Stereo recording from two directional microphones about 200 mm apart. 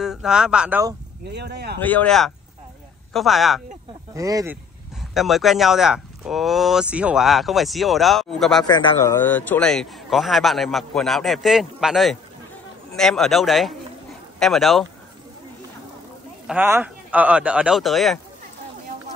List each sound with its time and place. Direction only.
0.0 s speech: centre (ahead or behind)
1.3 s speech: 55° right (ahead or behind)
1.8 s speech: 10° left (ahead or behind)
4.1 s speech: 15° right (ahead or behind)
5.1 s speech: centre (ahead or behind)
8.6 s speech: 20° left (ahead or behind)
9.2 s speech: 10° left (ahead or behind)
16.4 s speech: 10° right (ahead or behind)